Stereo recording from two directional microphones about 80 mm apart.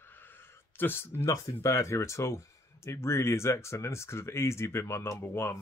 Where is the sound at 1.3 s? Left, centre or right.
Left.